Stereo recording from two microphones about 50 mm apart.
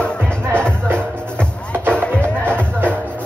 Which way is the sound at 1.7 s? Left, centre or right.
Right.